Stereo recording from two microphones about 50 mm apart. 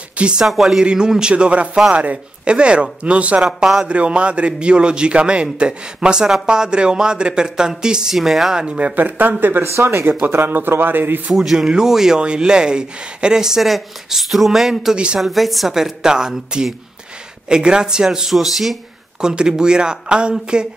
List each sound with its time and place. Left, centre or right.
0.2 s a man's voice: centre
0.5 s speech: centre
0.8 s a man's voice: centre
8.6 s a man's voice: right
8.9 s a man's voice: right
9.8 s speech: right
10.2 s a man's voice: right
11.3 s speech: centre
18.3 s speech: centre
19.2 s speech: centre